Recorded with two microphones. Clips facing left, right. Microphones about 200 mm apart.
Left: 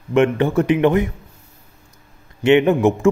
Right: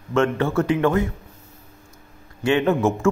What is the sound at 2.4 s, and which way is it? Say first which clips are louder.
Speech: left 5 dB; 20° left (ahead or behind).